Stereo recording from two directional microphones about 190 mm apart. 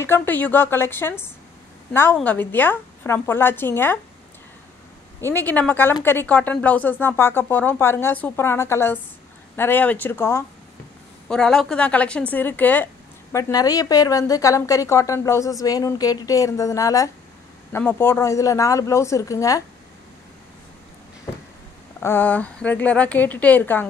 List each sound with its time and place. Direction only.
0.0 s a woman's voice: 10° left (ahead or behind)
5.2 s a woman's voice: 10° left (ahead or behind)
22.0 s a woman's voice: 10° left (ahead or behind)